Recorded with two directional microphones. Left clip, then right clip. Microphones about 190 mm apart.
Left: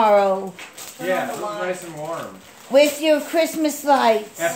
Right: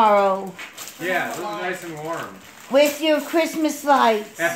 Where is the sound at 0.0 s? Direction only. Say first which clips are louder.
Even; 5° right (ahead or behind).